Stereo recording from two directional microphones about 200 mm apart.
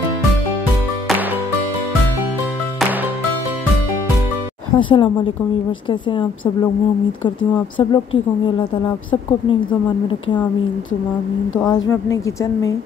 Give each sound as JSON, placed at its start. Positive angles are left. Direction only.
{"t": 4.7, "sound": "a woman's voice", "side_deg": 25}
{"t": 7.2, "sound": "a woman's voice", "side_deg": 25}
{"t": 11.6, "sound": "a woman's voice", "side_deg": 20}